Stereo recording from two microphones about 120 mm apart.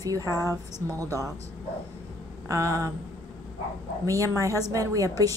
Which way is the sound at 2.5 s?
25° right (ahead or behind).